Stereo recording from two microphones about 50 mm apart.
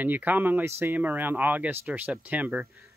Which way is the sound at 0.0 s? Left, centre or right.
Right.